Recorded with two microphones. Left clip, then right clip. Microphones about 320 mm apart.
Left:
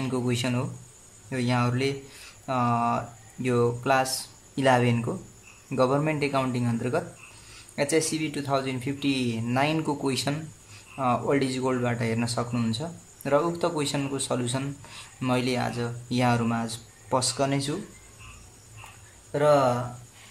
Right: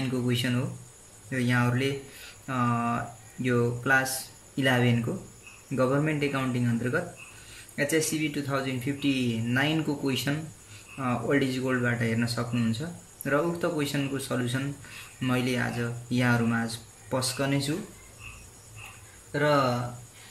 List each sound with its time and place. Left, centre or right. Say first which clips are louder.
0.1 s speech: left 2 dB; centre
19.3 s speech: left 3 dB; centre